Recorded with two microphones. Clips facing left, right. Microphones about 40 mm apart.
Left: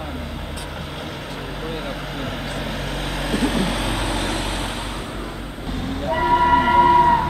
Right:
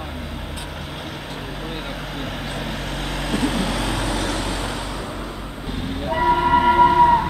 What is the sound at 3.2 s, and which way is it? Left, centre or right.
Vehicle, centre.